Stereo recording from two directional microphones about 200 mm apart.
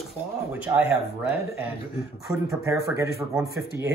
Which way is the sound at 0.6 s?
10° right (ahead or behind).